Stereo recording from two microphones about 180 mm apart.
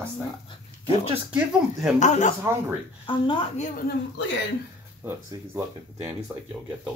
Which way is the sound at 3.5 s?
40° left (ahead or behind).